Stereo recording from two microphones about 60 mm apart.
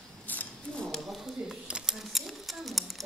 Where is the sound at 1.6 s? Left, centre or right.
Centre.